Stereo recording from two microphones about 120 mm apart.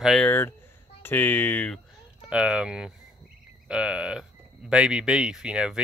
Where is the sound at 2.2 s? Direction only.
5° right (ahead or behind).